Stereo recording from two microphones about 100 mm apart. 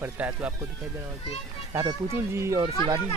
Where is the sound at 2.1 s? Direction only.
25° right (ahead or behind).